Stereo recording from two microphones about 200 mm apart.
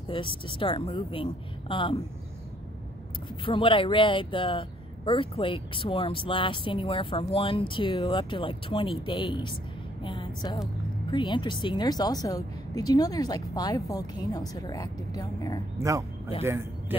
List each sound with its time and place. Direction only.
0.1 s speech: 25° left (ahead or behind)
3.4 s a woman's voice: 25° left (ahead or behind)
15.8 s speech: 15° right (ahead or behind)